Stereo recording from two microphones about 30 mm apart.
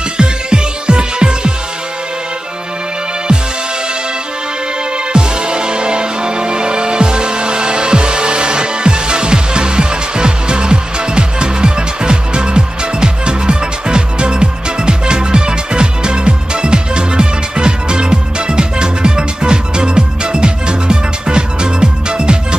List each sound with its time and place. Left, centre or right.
0.2 s music: right
5.1 s music: right